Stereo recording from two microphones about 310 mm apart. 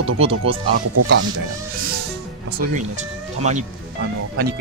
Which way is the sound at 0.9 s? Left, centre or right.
Right.